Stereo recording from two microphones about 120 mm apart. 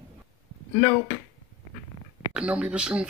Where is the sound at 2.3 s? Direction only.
10° right (ahead or behind).